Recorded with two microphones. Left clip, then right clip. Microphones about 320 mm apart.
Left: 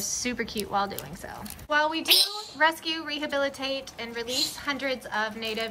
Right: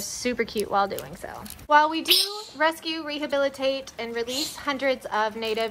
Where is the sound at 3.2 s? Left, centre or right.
Right.